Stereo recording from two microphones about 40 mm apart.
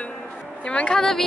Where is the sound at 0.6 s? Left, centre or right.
Left.